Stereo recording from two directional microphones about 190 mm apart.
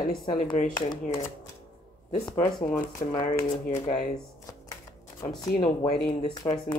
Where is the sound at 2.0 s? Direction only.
35° left (ahead or behind).